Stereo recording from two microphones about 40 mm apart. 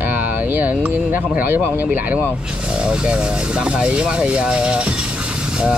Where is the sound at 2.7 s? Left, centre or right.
Right.